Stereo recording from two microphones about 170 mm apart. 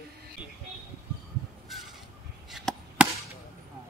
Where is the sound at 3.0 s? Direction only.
5° right (ahead or behind).